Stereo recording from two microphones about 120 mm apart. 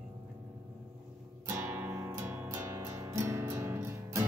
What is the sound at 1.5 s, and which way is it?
Music, 20° right (ahead or behind).